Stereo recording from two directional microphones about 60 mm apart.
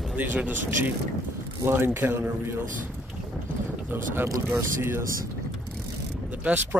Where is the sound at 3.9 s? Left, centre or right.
Right.